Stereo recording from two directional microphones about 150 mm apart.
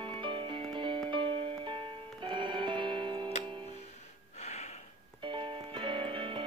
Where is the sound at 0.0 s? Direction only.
35° right (ahead or behind).